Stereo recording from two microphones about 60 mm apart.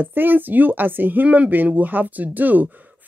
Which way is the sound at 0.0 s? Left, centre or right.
Right.